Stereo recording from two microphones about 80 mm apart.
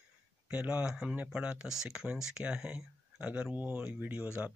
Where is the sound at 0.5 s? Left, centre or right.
Centre.